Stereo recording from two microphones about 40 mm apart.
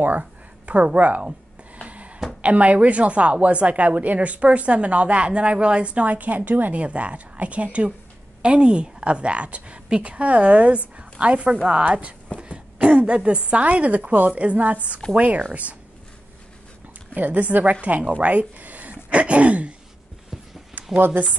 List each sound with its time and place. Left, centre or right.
0.9 s a woman's voice: right
1.9 s a sound: right
2.4 s a woman's voice: right
6.7 s a woman's voice: right
17.1 s a woman's voice: right
21.1 s a woman's voice: right